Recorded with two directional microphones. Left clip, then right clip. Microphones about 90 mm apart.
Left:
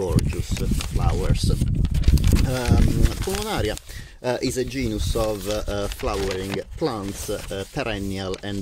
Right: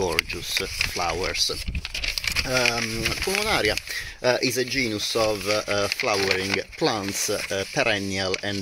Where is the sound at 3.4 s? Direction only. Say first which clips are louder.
Right 4 dB; 30° left (ahead or behind).